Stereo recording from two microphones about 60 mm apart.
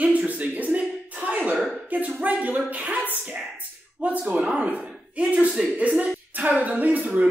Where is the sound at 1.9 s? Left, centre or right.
Right.